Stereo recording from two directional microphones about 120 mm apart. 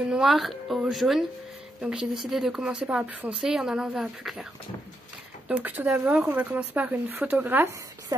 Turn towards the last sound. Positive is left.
turn(degrees=-15)  # may be behind; listen again after turning